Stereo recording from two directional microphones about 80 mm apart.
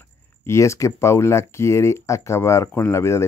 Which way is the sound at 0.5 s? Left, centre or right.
Left.